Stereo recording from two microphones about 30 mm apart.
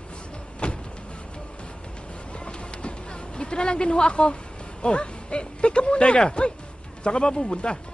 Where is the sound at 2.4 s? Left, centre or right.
Left.